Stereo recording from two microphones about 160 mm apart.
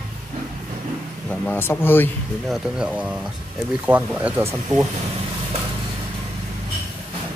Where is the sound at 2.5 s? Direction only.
5° right (ahead or behind).